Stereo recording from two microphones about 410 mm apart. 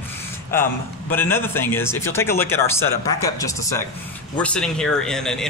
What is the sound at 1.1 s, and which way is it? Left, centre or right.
Speech, centre.